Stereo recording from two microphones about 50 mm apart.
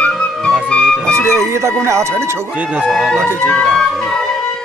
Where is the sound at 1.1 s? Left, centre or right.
Right.